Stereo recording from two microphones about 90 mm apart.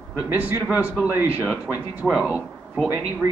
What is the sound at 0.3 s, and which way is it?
A man's voice, 20° right (ahead or behind).